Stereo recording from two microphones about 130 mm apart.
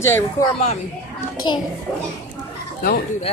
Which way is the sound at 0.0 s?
20° left (ahead or behind).